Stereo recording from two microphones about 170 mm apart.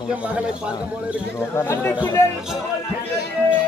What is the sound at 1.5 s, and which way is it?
Speech, 15° left (ahead or behind).